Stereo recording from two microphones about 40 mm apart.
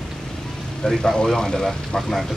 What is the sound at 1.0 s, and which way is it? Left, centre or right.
Speech, centre.